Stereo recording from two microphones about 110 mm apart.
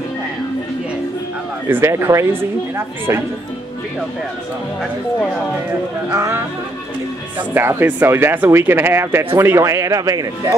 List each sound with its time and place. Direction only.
1.7 s speech: 20° right (ahead or behind)
6.1 s speech: 25° right (ahead or behind)
7.5 s speech: 15° right (ahead or behind)